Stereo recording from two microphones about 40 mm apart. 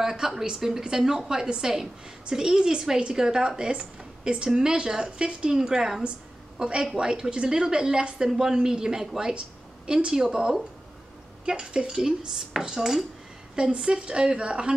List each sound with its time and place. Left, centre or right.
0.0 s a woman's voice: centre